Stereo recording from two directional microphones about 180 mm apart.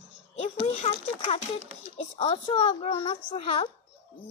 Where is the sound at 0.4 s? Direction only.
35° left (ahead or behind).